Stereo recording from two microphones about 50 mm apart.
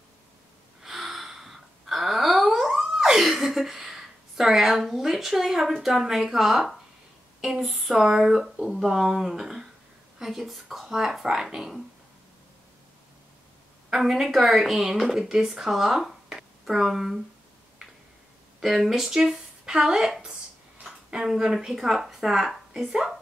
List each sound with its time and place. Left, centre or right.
0.8 s wail: centre
5.8 s a woman's voice: centre
13.9 s speech: centre
18.6 s speech: centre